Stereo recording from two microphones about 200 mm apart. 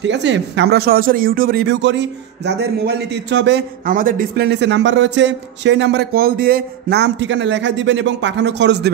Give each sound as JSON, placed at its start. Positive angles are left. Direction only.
{"t": 0.0, "sound": "speech", "side_deg": -60}
{"t": 3.8, "sound": "speech", "side_deg": -45}